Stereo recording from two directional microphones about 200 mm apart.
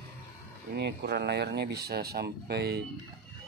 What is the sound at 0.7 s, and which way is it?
Speech, 55° right (ahead or behind).